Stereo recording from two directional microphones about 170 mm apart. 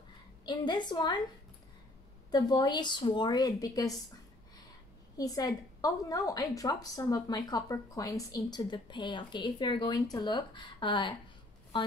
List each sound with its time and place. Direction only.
0.5 s a woman's voice: 25° left (ahead or behind)
2.3 s a woman's voice: 25° left (ahead or behind)
5.1 s a woman's voice: 20° left (ahead or behind)